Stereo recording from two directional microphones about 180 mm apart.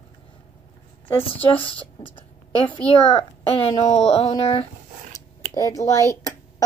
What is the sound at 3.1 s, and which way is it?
Speech, 35° left (ahead or behind).